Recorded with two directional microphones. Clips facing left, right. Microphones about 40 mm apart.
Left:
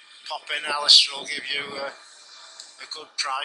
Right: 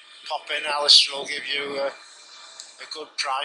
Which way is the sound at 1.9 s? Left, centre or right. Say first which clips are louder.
Right 2 dB; right.